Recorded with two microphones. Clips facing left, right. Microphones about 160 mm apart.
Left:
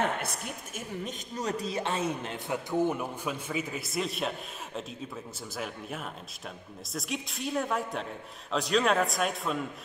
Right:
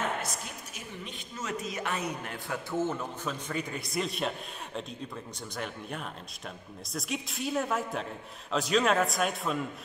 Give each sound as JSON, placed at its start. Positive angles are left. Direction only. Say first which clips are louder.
{"t": 0.2, "sound": "a woman's voice", "louder": "left 1 dB", "side_deg": 55}